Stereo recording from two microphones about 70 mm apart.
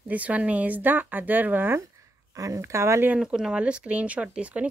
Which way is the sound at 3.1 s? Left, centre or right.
Centre.